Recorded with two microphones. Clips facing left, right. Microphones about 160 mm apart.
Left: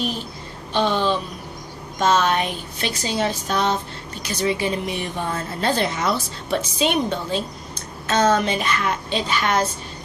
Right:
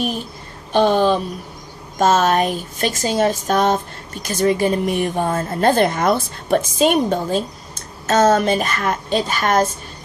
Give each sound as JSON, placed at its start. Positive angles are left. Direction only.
{"t": 0.7, "sound": "speech", "side_deg": -45}